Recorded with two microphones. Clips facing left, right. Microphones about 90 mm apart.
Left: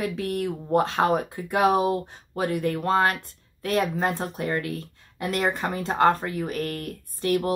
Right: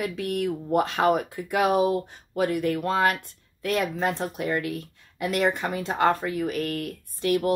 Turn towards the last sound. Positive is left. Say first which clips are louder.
# even
turn(degrees=35)  # may be behind; listen again after turning